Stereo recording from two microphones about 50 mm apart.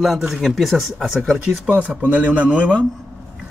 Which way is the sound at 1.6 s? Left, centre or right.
Right.